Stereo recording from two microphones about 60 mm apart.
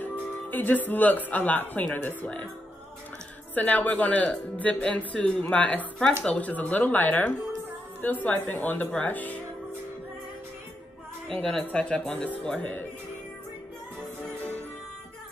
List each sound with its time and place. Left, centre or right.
0.0 s music: left
0.8 s speech: left
3.5 s speech: left
11.2 s a woman's voice: centre